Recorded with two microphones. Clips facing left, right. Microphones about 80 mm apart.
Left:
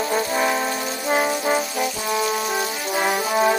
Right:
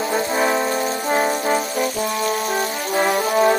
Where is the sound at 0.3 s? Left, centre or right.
Right.